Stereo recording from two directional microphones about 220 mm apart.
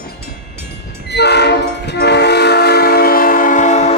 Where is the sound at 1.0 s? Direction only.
50° left (ahead or behind).